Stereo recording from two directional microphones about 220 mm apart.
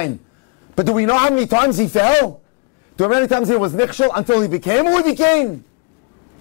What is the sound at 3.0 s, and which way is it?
Speech, 20° left (ahead or behind).